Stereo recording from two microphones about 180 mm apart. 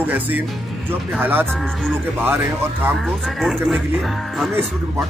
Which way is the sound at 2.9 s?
Centre (ahead or behind).